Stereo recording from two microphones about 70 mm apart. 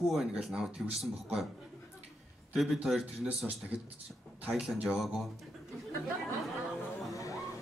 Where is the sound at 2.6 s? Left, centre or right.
Centre.